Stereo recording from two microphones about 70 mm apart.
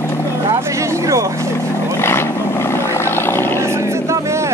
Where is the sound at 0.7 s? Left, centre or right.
Right.